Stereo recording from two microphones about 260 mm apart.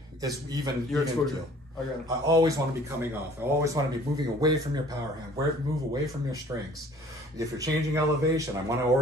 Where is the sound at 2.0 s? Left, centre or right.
Centre.